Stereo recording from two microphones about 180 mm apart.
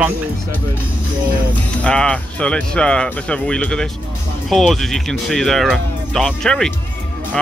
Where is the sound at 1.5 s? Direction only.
5° left (ahead or behind).